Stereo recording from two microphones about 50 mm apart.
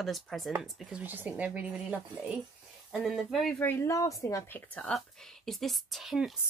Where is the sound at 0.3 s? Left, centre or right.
Centre.